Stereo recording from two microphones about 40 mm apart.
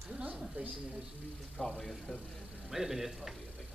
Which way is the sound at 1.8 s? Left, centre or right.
Centre.